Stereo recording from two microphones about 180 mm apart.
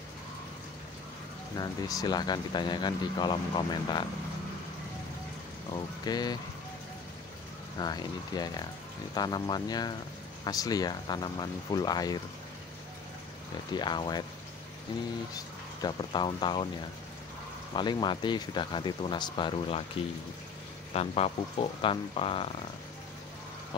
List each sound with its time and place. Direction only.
1.6 s speech: 20° left (ahead or behind)
6.0 s speech: 20° left (ahead or behind)
7.8 s speech: 20° left (ahead or behind)
13.7 s speech: 25° left (ahead or behind)
15.3 s speech: 25° left (ahead or behind)
17.7 s speech: 25° left (ahead or behind)
20.9 s speech: 35° left (ahead or behind)